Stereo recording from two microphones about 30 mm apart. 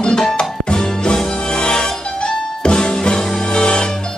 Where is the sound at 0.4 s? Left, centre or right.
Left.